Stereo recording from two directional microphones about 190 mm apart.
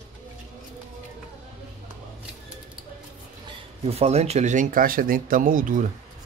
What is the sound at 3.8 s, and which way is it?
Speech, 35° right (ahead or behind).